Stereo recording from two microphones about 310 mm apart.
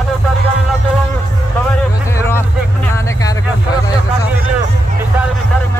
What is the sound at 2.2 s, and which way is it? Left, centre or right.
Music, centre.